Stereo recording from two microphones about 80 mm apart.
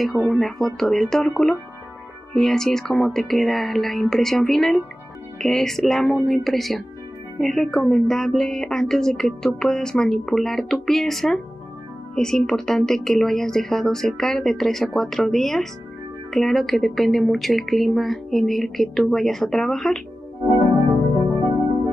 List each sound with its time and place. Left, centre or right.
0.4 s a woman's voice: centre
21.3 s music: right